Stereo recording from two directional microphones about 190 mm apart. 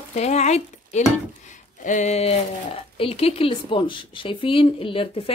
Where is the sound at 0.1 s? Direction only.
35° left (ahead or behind).